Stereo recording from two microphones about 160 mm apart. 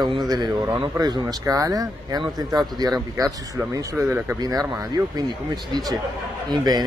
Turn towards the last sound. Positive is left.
turn(degrees=-25)  # may be behind; listen again after turning